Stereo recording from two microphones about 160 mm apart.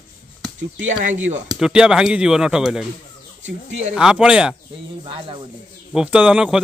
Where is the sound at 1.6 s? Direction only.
5° right (ahead or behind).